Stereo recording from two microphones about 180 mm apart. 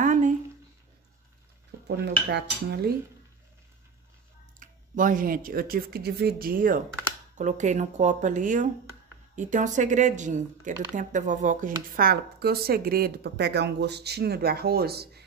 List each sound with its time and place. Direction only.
0.0 s a sound: 45° right (ahead or behind)
1.9 s dishes: 70° right (ahead or behind)
4.6 s speech: 45° right (ahead or behind)